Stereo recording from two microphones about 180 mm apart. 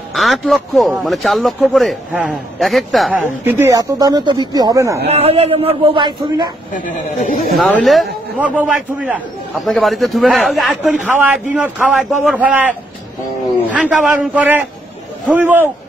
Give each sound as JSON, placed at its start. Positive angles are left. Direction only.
{"t": 0.1, "sound": "a man's voice", "side_deg": 0}
{"t": 3.4, "sound": "speech", "side_deg": -15}
{"t": 5.1, "sound": "speech", "side_deg": -35}
{"t": 6.7, "sound": "speech", "side_deg": 45}
{"t": 7.5, "sound": "a man's voice", "side_deg": 0}
{"t": 13.7, "sound": "a man's voice", "side_deg": -5}